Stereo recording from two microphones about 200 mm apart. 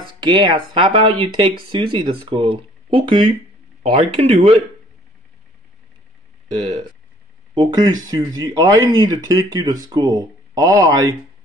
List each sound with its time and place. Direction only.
0.2 s speech: 20° right (ahead or behind)
7.5 s speech: 20° right (ahead or behind)